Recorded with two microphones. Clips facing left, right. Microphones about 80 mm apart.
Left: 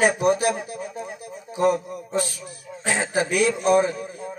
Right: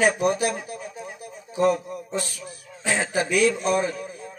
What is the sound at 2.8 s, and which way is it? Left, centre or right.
A man's voice, centre.